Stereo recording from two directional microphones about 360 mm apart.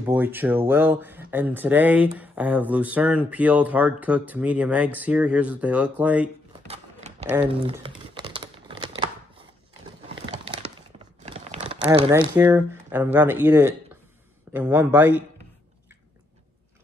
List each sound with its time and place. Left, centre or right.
0.0 s speech: centre
6.7 s a sound: centre
7.2 s speech: centre
8.1 s crumpling: centre
10.2 s a sound: centre
11.2 s speech: centre